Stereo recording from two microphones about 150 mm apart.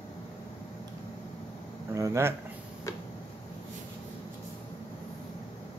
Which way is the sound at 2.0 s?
20° right (ahead or behind).